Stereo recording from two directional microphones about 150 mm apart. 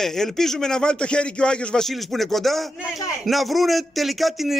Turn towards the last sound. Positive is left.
turn(degrees=0)  # may be behind; listen again after turning